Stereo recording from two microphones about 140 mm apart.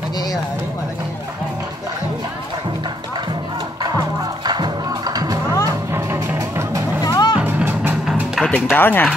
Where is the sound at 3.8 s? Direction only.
30° right (ahead or behind).